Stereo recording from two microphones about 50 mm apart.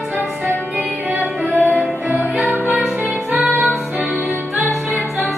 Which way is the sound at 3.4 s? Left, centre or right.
Centre.